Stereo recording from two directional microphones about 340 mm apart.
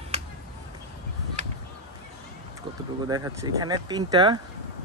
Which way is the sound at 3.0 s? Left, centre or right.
Centre.